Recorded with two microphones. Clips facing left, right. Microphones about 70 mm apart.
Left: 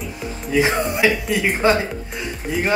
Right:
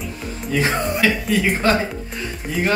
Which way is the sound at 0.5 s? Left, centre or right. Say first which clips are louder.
Left 2 dB; centre.